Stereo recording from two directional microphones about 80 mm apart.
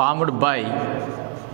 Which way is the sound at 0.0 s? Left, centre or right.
Centre.